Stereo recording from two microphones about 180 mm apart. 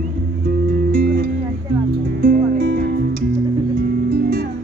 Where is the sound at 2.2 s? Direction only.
55° right (ahead or behind).